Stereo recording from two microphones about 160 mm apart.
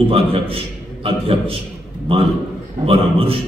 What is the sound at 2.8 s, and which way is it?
Speech, 35° right (ahead or behind).